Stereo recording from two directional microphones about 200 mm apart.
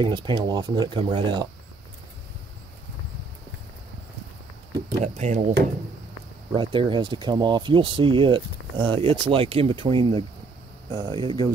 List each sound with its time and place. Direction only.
0.0 s speech: 25° right (ahead or behind)
5.0 s speech: 35° right (ahead or behind)
6.5 s speech: 25° right (ahead or behind)